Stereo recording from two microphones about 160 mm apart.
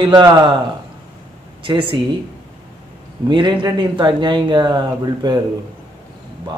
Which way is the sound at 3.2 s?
30° right (ahead or behind).